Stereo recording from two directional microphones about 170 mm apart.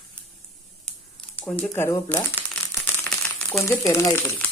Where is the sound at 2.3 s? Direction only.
10° left (ahead or behind).